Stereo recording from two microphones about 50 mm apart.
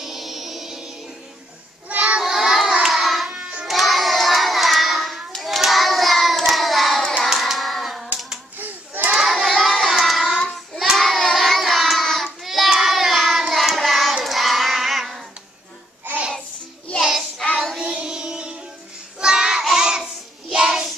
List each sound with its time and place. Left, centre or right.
0.0 s music: centre
1.9 s cat: right
2.2 s hands: centre
3.3 s child singing: centre
3.6 s hands: centre
8.5 s a sound: right
9.1 s child singing: centre
17.7 s music: centre
19.1 s child singing: centre